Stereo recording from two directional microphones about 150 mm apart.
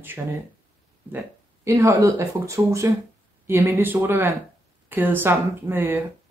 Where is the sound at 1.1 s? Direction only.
20° right (ahead or behind).